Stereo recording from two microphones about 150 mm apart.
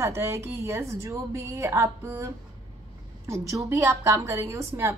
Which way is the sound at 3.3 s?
20° right (ahead or behind).